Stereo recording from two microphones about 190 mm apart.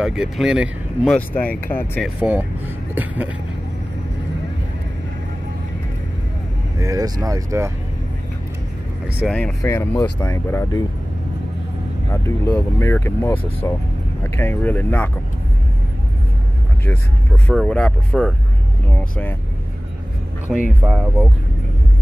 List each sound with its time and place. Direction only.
0.0 s speech: 5° right (ahead or behind)
2.0 s speech: 5° right (ahead or behind)
6.8 s speech: 15° right (ahead or behind)
9.2 s speech: centre (ahead or behind)
9.6 s speech: 10° left (ahead or behind)
12.1 s speech: 15° left (ahead or behind)
17.5 s speech: 5° left (ahead or behind)
20.5 s speech: 5° right (ahead or behind)